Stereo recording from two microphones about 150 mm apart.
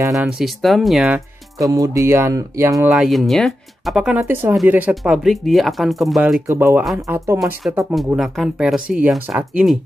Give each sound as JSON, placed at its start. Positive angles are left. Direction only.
{"t": 0.1, "sound": "speech", "side_deg": 0}
{"t": 1.6, "sound": "speech", "side_deg": -25}
{"t": 2.9, "sound": "speech", "side_deg": 0}
{"t": 6.4, "sound": "speech", "side_deg": -15}